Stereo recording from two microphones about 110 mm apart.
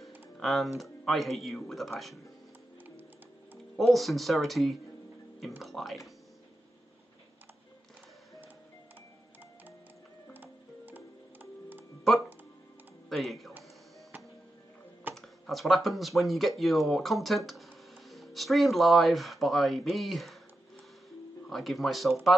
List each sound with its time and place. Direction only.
0.4 s speech: centre (ahead or behind)
3.7 s speech: centre (ahead or behind)
10.3 s music: 15° right (ahead or behind)
13.1 s speech: centre (ahead or behind)
15.1 s speech: centre (ahead or behind)
21.5 s speech: centre (ahead or behind)